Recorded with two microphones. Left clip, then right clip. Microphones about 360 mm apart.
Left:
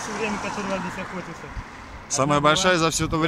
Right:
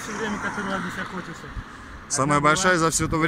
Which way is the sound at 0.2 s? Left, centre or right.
Left.